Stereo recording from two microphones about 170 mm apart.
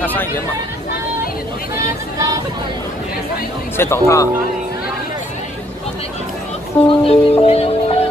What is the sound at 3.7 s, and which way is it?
Speech, 15° left (ahead or behind).